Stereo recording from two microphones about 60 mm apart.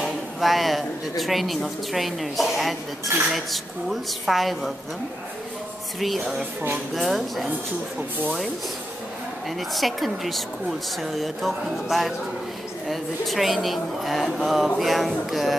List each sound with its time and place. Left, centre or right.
0.0 s a woman's voice: centre
5.9 s a woman's voice: centre
9.8 s a woman's voice: centre